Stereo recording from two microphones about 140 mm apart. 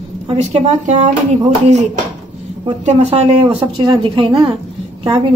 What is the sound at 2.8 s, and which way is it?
Speech, 50° right (ahead or behind).